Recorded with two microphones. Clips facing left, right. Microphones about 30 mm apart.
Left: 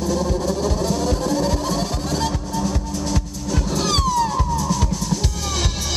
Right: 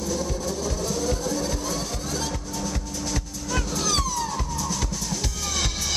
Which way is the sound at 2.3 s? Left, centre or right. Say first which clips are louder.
Left 6 dB; left.